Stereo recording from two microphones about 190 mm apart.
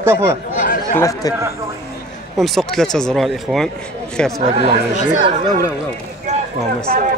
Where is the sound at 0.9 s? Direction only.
15° left (ahead or behind).